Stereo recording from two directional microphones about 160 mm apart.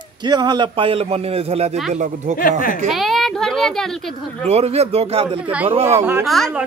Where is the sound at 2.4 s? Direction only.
60° left (ahead or behind).